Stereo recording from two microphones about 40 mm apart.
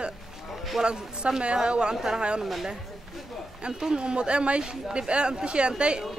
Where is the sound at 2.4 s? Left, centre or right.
Centre.